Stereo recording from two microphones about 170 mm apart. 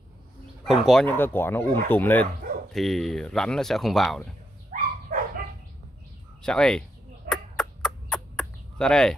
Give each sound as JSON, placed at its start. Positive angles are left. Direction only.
{"t": 0.7, "sound": "speech", "side_deg": 0}
{"t": 1.1, "sound": "speech", "side_deg": 10}
{"t": 2.7, "sound": "speech", "side_deg": 0}
{"t": 4.7, "sound": "dog", "side_deg": -45}
{"t": 6.4, "sound": "speech", "side_deg": 5}
{"t": 7.2, "sound": "a sound", "side_deg": 5}